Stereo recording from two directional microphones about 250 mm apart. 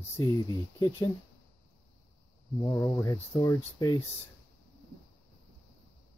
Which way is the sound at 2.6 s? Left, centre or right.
Centre.